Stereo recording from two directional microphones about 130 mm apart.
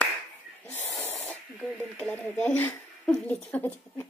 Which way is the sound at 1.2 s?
5° left (ahead or behind).